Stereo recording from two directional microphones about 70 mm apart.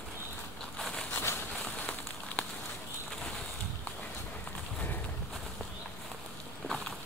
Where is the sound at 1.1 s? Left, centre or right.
Left.